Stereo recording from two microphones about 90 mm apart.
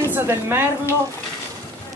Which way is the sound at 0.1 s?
25° right (ahead or behind).